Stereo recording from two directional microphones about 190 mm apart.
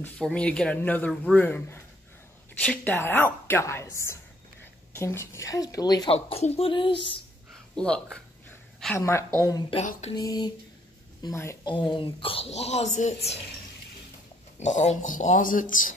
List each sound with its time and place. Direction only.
0.0 s speech: 5° left (ahead or behind); by 6.1 s 20° left (ahead or behind)
6.1 s a woman's voice: 30° left (ahead or behind)
7.7 s speech: 5° left (ahead or behind)
8.7 s a sound: 5° left (ahead or behind)
9.0 s speech: 15° left (ahead or behind)
9.8 s speech: 35° left (ahead or behind)
10.1 s a woman's voice: 20° left (ahead or behind)
14.6 s speech: 40° left (ahead or behind)